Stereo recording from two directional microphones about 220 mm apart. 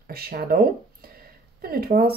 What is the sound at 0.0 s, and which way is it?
Speech, 45° right (ahead or behind).